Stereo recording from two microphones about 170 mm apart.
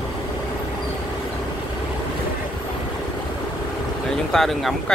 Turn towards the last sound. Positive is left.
turn(degrees=0)  # may be behind; listen again after turning